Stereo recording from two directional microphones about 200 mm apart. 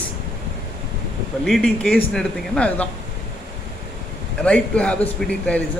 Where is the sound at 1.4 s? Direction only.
Centre (ahead or behind).